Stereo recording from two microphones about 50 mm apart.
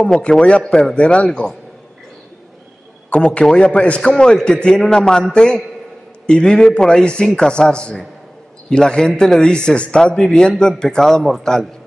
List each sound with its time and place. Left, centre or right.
0.0 s a man's voice: centre
3.1 s a man's voice: centre